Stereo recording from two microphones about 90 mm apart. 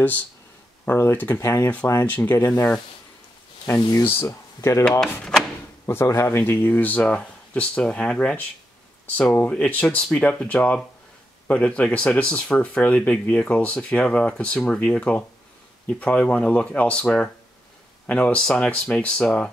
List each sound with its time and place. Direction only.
0.8 s speech: 25° left (ahead or behind)
5.9 s speech: 30° left (ahead or behind); by 19.5 s 15° left (ahead or behind)